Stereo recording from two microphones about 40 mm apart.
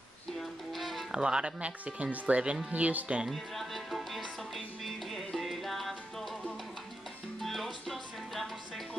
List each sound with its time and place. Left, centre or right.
0.4 s music: centre
1.1 s speech: right
3.3 s music: centre
7.4 s music: centre